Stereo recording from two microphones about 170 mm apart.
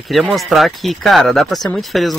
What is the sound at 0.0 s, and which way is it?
Speech, centre (ahead or behind).